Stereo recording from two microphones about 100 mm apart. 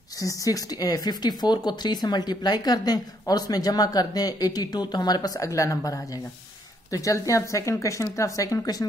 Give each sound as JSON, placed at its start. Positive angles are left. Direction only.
{"t": 0.2, "sound": "speech", "side_deg": 35}